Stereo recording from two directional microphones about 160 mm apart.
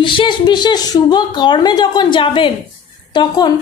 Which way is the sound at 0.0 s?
30° left (ahead or behind).